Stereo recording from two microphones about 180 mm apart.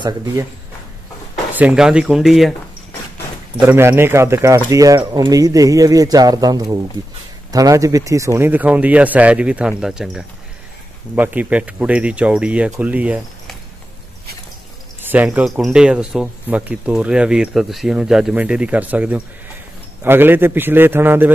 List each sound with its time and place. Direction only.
0.0 s speech: 20° right (ahead or behind)
1.3 s speech: 10° right (ahead or behind)
3.6 s speech: 15° right (ahead or behind)
15.0 s speech: 10° right (ahead or behind)